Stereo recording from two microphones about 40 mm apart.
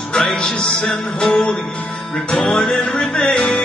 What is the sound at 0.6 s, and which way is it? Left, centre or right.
Speech, centre.